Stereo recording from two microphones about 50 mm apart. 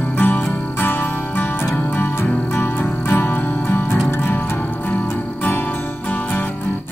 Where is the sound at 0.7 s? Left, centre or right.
Left.